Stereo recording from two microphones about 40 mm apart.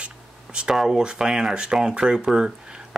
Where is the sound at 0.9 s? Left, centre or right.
Centre.